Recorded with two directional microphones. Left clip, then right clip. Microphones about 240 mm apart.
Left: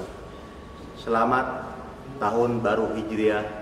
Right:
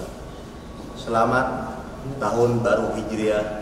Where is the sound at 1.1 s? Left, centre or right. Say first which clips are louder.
Right 2 dB; right.